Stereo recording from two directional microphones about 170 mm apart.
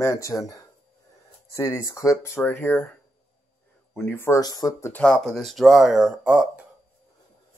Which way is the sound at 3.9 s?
15° left (ahead or behind).